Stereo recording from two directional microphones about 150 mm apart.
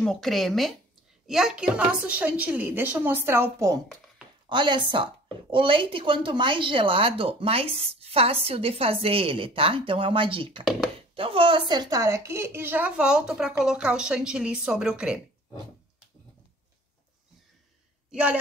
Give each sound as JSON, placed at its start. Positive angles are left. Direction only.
{"t": 0.0, "sound": "a woman's voice", "side_deg": 0}
{"t": 4.5, "sound": "a woman's voice", "side_deg": -30}
{"t": 18.1, "sound": "a woman's voice", "side_deg": -10}